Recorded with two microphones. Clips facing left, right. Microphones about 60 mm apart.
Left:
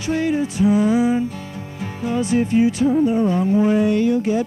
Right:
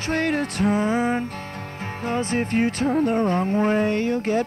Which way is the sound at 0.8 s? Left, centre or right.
Right.